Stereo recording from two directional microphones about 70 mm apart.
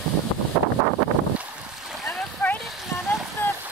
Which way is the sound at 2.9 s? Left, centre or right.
Left.